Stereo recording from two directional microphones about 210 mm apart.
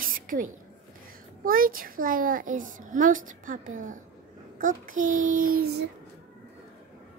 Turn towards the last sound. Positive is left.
turn(degrees=-40)  # may be behind; listen again after turning